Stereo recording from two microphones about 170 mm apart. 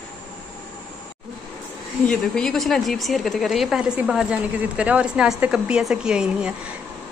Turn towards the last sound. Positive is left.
turn(degrees=-5)  # may be behind; listen again after turning